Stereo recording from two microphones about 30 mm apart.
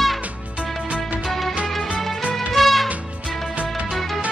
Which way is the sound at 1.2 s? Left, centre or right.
Centre.